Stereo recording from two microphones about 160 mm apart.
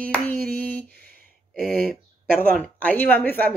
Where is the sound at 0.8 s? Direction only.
75° right (ahead or behind).